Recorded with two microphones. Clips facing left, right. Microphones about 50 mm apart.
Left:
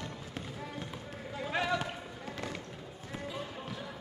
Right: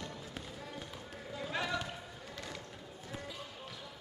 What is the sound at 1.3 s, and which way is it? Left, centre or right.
Basketball bounce, left.